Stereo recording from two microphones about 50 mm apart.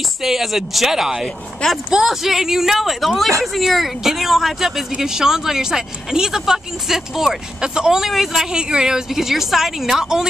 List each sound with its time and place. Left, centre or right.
0.2 s speech: centre
1.2 s speech: centre
1.9 s speech: centre
8.5 s speech: centre